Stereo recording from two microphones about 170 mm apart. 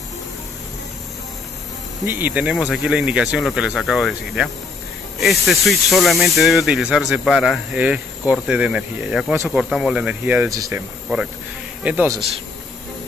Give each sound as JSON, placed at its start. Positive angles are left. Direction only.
{"t": 2.0, "sound": "speech", "side_deg": -10}